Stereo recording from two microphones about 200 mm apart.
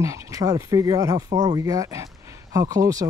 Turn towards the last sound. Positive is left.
turn(degrees=-15)  # may be behind; listen again after turning